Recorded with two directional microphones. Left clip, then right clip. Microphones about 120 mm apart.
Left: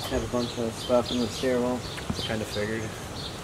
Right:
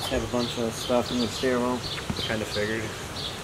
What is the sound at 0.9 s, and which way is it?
Speech, 20° right (ahead or behind).